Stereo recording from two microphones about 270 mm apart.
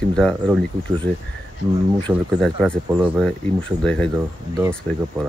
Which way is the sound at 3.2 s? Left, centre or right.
Centre.